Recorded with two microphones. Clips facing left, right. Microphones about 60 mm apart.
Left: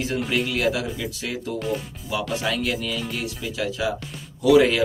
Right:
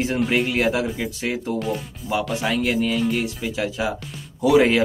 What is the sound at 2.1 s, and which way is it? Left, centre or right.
Speech, right.